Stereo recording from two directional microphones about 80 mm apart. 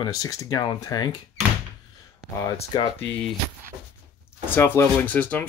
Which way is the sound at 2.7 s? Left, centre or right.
Left.